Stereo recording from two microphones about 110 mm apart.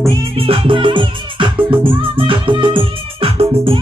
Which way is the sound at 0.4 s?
55° right (ahead or behind).